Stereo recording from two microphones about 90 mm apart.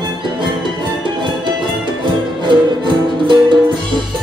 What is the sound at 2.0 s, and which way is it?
Music, 65° right (ahead or behind).